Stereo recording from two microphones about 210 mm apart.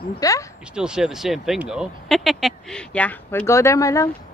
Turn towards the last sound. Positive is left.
turn(degrees=15)  # may be behind; listen again after turning